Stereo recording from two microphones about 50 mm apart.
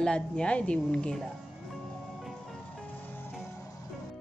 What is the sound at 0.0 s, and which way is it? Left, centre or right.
Speech, centre.